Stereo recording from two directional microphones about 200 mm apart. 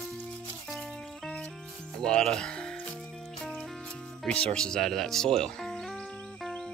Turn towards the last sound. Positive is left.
turn(degrees=0)  # may be behind; listen again after turning